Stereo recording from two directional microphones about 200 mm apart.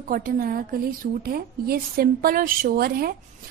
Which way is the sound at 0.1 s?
45° right (ahead or behind).